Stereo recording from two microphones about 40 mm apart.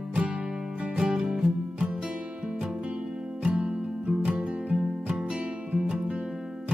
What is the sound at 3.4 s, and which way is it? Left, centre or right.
Music, right.